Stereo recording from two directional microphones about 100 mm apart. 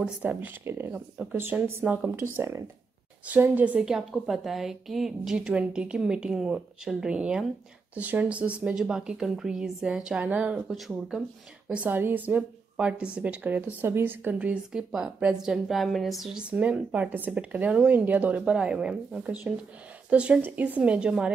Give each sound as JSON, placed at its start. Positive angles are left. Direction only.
{"t": 0.2, "sound": "speech", "side_deg": -20}
{"t": 3.3, "sound": "a woman's voice", "side_deg": -15}
{"t": 11.7, "sound": "a woman's voice", "side_deg": -20}
{"t": 16.4, "sound": "a woman's voice", "side_deg": -10}